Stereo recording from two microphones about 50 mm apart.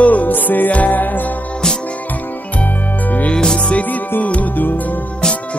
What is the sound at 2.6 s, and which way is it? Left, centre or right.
Music, left.